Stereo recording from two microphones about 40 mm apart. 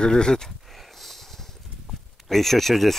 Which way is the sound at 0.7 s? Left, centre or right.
Centre.